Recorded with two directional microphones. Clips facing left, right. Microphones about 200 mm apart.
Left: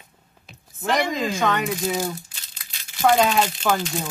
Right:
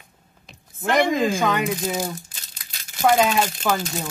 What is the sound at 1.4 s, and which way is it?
Speech, 5° right (ahead or behind).